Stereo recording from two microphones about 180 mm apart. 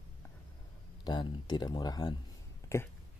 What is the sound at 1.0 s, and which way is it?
Speech, 25° left (ahead or behind).